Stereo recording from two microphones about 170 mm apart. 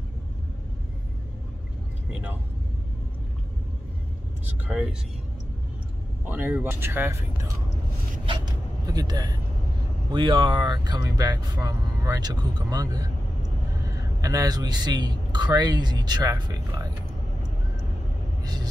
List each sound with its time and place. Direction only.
6.2 s speech: 10° right (ahead or behind)
8.8 s a man's voice: 20° right (ahead or behind)
18.4 s vehicle: 25° right (ahead or behind)